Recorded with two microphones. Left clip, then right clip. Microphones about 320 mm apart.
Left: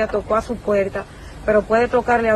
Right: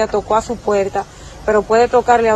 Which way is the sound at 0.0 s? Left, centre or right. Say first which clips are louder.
Right 4 dB; centre.